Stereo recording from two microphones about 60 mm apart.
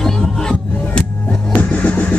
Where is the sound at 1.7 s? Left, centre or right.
Left.